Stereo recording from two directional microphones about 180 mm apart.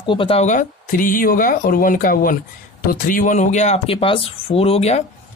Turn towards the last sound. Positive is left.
turn(degrees=35)  # may be behind; listen again after turning